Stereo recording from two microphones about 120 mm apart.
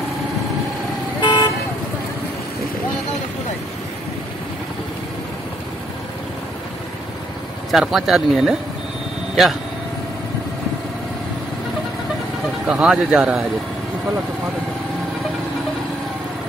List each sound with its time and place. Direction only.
1.2 s vehicle: 40° left (ahead or behind)
7.7 s speech: 5° right (ahead or behind)
12.6 s speech: 5° right (ahead or behind)